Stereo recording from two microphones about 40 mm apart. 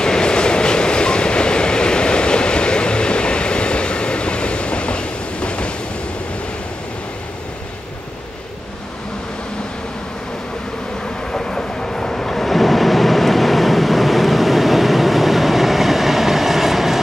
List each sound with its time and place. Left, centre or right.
0.0 s train: centre
11.3 s vehicle: centre